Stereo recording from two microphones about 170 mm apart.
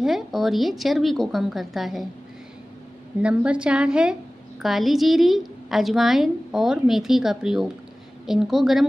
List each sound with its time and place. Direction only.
0.0 s a woman's voice: centre (ahead or behind)
3.2 s a woman's voice: 5° right (ahead or behind)